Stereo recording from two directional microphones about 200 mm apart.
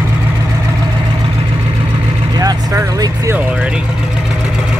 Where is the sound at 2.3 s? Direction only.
15° right (ahead or behind).